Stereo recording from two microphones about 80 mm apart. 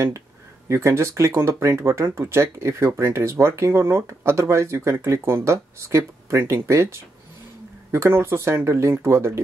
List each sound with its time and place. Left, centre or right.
0.7 s speech: right